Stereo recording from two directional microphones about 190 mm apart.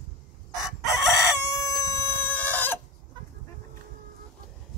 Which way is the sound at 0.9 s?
15° left (ahead or behind).